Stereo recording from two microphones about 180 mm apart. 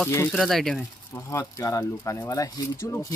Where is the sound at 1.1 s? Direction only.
15° left (ahead or behind).